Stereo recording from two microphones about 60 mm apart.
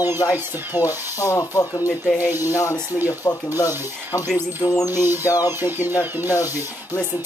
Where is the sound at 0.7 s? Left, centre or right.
Right.